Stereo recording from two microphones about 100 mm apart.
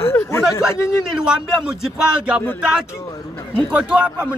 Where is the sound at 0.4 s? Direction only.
5° right (ahead or behind).